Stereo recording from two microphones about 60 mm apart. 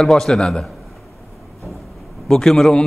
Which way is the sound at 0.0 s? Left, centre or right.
Centre.